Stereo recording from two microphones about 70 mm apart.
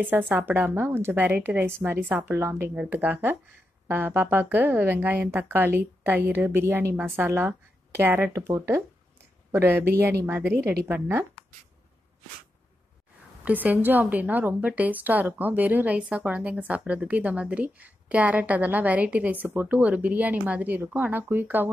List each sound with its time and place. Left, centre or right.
0.0 s a woman's voice: right
2.3 s speech: right
2.7 s a woman's voice: right
13.4 s a woman's voice: right